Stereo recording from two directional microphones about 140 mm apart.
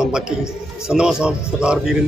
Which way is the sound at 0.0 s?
5° right (ahead or behind).